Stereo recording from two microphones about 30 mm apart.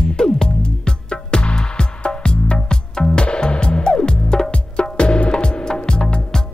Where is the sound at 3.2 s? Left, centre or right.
Left.